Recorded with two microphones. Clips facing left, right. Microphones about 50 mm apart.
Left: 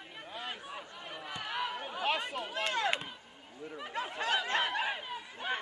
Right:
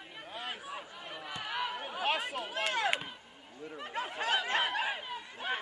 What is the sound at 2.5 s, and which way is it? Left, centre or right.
Chop, right.